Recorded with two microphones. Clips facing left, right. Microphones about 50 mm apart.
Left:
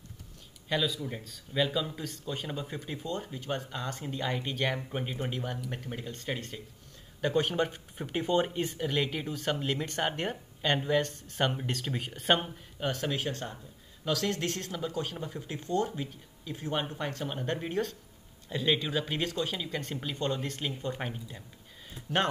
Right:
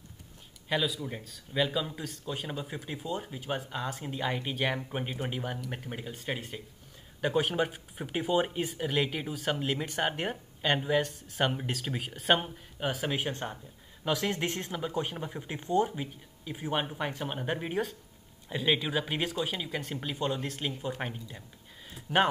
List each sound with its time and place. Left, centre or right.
0.7 s speech: centre
13.1 s speech: right